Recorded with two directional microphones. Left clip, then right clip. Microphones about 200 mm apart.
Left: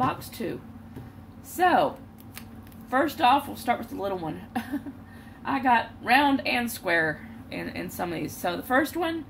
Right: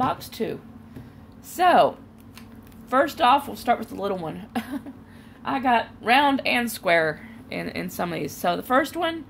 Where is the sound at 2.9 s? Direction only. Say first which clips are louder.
Right 3 dB; 45° right (ahead or behind).